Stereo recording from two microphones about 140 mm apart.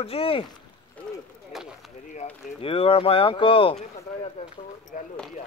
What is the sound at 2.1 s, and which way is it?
Speech, 45° left (ahead or behind).